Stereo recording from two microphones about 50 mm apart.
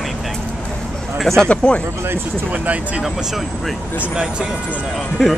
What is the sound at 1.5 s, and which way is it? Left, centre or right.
Speech, left.